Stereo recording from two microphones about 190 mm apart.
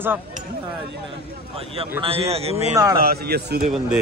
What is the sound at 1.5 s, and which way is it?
A man's voice, 30° right (ahead or behind).